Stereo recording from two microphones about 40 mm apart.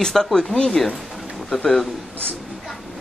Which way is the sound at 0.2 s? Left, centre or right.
Centre.